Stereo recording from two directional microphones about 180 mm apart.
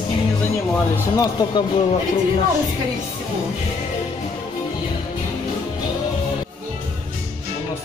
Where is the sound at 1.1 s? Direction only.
20° left (ahead or behind).